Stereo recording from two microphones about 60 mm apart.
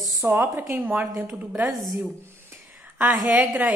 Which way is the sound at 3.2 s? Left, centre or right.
Right.